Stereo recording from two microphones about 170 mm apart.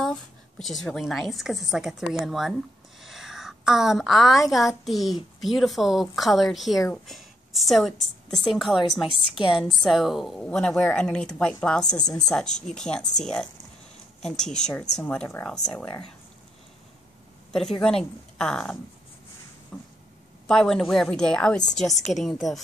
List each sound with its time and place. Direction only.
0.0 s a sound: 5° left (ahead or behind)
0.8 s a woman's voice: centre (ahead or behind)
3.0 s a sound: centre (ahead or behind)
4.5 s a woman's voice: centre (ahead or behind)
11.8 s a woman's voice: 20° left (ahead or behind)
12.1 s a woman's voice: 5° left (ahead or behind)
17.5 s a woman's voice: 5° left (ahead or behind)
19.7 s a sound: 5° left (ahead or behind)
20.4 s a woman's voice: 5° left (ahead or behind)